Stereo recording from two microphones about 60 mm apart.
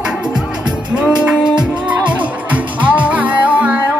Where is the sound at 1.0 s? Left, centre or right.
Centre.